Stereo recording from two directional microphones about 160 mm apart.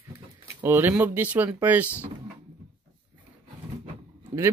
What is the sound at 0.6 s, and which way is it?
Speech, 10° right (ahead or behind).